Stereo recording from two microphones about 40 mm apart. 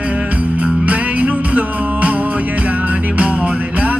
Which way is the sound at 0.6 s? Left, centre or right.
Right.